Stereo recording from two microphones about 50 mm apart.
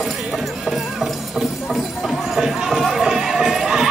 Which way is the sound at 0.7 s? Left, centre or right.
Centre.